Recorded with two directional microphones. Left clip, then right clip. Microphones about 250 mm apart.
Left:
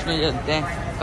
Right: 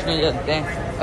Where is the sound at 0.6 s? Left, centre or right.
Centre.